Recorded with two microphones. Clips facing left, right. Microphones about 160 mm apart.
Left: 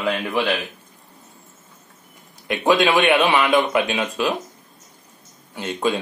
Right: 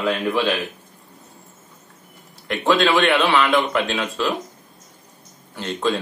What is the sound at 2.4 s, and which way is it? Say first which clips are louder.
A man's voice: left 1 dB; 15° left (ahead or behind).